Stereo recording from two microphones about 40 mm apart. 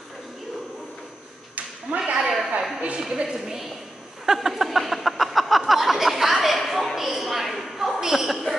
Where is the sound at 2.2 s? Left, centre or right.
Centre.